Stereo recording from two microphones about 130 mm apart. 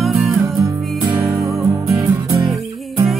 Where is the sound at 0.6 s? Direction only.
25° right (ahead or behind).